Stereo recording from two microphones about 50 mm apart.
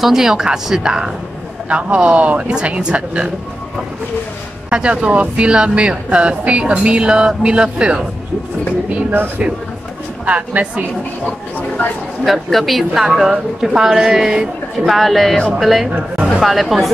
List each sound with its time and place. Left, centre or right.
0.0 s a woman's voice: centre
4.6 s speech: right
10.2 s speech: right
12.3 s a man's voice: centre
13.0 s a woman's voice: centre